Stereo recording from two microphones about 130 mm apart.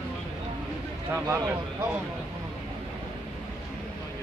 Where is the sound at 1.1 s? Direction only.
20° right (ahead or behind).